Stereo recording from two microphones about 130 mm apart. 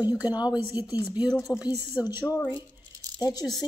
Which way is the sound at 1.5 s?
20° left (ahead or behind).